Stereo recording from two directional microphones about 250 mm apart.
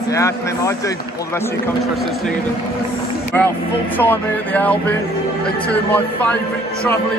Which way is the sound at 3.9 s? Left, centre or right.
Centre.